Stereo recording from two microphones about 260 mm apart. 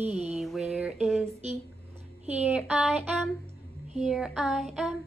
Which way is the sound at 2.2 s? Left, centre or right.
Centre.